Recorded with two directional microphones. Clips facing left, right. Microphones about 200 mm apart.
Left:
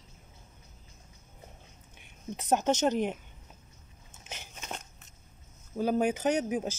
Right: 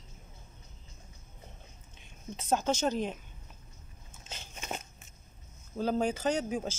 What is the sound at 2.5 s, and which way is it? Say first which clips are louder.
Speech: left 3 dB; 20° left (ahead or behind).